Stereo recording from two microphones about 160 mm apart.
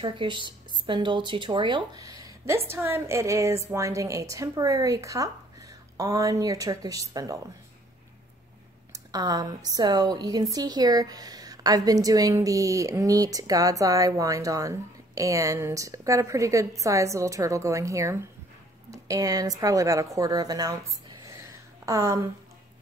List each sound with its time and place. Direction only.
0.0 s a woman's voice: 30° right (ahead or behind)
8.9 s a woman's voice: 25° right (ahead or behind)
21.8 s a woman's voice: 20° right (ahead or behind)